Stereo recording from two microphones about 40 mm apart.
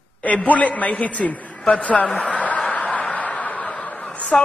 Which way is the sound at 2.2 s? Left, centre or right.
Left.